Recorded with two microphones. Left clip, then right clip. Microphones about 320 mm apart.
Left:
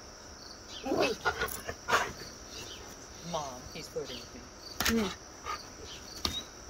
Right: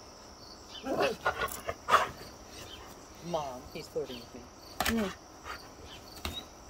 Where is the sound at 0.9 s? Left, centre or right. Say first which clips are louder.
Even; centre.